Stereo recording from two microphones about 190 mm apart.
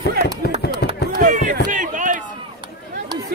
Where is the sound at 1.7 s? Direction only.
45° right (ahead or behind).